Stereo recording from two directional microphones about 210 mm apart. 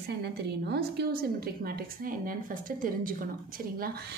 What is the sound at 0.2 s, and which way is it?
A woman's voice, 50° right (ahead or behind).